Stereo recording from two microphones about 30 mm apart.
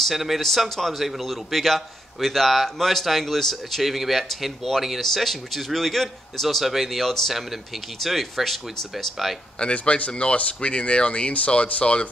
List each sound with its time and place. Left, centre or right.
0.1 s speech: centre
0.7 s a man's voice: centre
1.0 s a man's voice: centre
3.8 s a man's voice: centre
6.6 s a man's voice: centre
7.1 s a man's voice: centre
9.6 s speech: left